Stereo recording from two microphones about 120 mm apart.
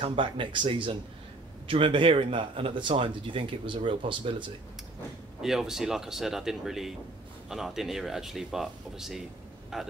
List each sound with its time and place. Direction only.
0.0 s speech: 45° right (ahead or behind)
5.4 s speech: 5° right (ahead or behind)